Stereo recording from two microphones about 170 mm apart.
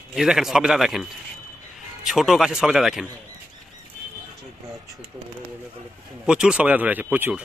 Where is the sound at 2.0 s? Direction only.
Centre (ahead or behind).